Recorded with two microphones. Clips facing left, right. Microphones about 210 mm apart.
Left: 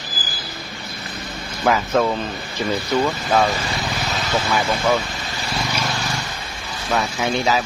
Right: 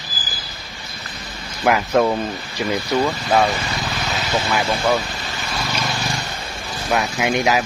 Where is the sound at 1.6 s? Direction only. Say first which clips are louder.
Right 2 dB; 15° right (ahead or behind).